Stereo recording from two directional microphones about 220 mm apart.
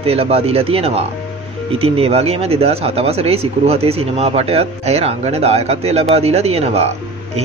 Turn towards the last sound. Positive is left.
turn(degrees=-30)  # may be behind; listen again after turning